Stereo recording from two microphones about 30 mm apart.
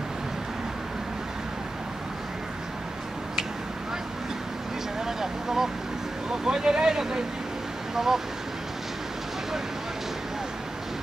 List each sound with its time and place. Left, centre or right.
5.0 s vehicle: centre
6.4 s speech: right